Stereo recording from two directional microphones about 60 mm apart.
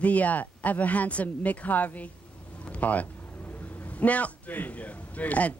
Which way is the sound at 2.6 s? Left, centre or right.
Left.